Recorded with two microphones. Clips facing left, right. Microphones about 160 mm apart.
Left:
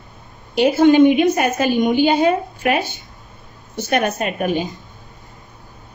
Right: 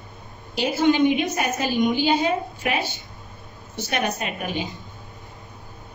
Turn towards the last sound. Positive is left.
turn(degrees=50)  # may be behind; listen again after turning